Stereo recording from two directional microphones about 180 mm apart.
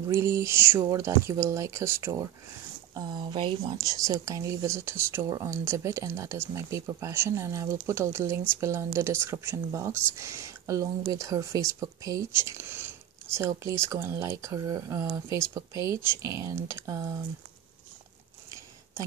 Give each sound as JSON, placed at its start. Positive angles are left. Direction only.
{"t": 0.0, "sound": "speech", "side_deg": -15}
{"t": 2.9, "sound": "speech", "side_deg": -25}